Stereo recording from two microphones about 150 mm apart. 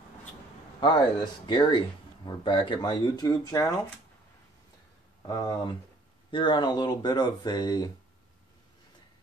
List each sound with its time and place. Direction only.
0.7 s a man's voice: 30° left (ahead or behind)
5.2 s a man's voice: 25° left (ahead or behind)